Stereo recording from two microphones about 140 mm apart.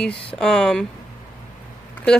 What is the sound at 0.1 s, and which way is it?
Speech, 40° left (ahead or behind).